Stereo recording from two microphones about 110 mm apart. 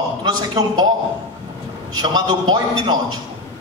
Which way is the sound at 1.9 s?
40° right (ahead or behind).